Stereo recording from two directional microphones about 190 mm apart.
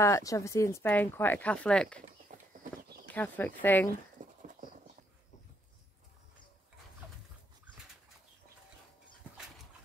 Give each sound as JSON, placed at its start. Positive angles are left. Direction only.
{"t": 0.0, "sound": "speech", "side_deg": 15}
{"t": 2.3, "sound": "clip-clop", "side_deg": -45}
{"t": 2.8, "sound": "horse", "side_deg": -50}
{"t": 3.2, "sound": "speech", "side_deg": 10}
{"t": 4.2, "sound": "dog", "side_deg": -45}